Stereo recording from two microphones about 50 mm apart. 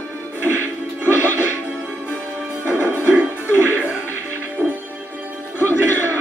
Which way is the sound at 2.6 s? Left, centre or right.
Left.